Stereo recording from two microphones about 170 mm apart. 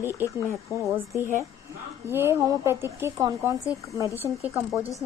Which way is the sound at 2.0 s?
15° right (ahead or behind).